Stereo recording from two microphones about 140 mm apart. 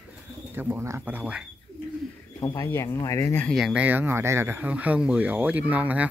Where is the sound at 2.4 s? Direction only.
20° left (ahead or behind).